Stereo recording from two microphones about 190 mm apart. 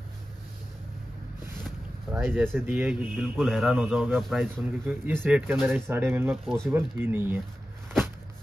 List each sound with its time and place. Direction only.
1.6 s a sound: 5° right (ahead or behind)
2.6 s a man's voice: 10° right (ahead or behind)
6.3 s a man's voice: 5° left (ahead or behind)
6.7 s speech: 10° right (ahead or behind)